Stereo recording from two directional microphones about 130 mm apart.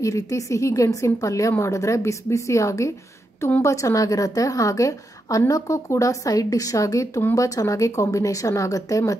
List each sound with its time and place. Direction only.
0.0 s a woman's voice: 25° left (ahead or behind)